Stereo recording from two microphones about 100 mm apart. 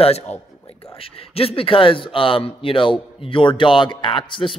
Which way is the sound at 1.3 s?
70° left (ahead or behind).